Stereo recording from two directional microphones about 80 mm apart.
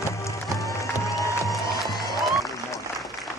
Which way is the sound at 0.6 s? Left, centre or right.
Left.